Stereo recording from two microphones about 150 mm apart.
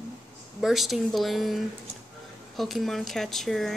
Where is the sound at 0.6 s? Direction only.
Centre (ahead or behind).